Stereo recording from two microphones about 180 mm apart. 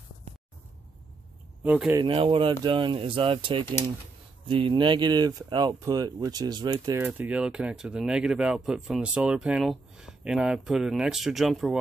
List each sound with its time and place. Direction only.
1.6 s speech: 10° right (ahead or behind)
2.0 s speech: 30° right (ahead or behind)
7.0 s speech: 10° right (ahead or behind)